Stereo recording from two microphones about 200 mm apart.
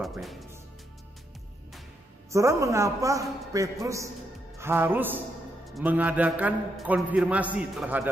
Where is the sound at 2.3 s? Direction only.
15° right (ahead or behind).